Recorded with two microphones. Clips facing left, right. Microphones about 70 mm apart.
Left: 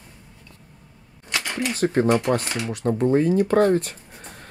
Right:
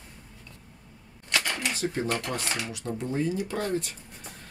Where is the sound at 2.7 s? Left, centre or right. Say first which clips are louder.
Left 12 dB; left.